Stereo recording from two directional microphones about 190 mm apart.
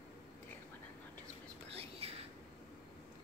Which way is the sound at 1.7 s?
30° right (ahead or behind).